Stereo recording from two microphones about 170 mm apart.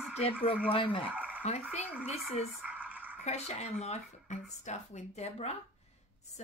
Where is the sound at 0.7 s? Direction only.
30° left (ahead or behind).